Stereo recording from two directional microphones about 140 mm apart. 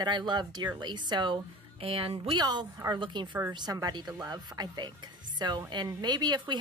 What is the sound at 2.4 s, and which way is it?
Speech, 30° right (ahead or behind).